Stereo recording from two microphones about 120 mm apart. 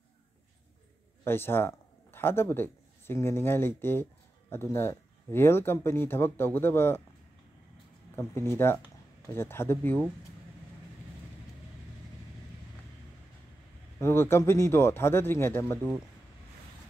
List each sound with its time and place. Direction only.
1.2 s a man's voice: 20° left (ahead or behind)
8.2 s speech: 20° left (ahead or behind)
13.9 s speech: 20° left (ahead or behind)